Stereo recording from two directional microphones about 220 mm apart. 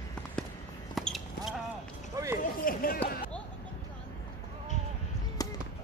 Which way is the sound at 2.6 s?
40° left (ahead or behind).